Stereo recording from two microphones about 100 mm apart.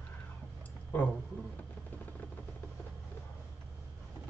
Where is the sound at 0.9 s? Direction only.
15° left (ahead or behind).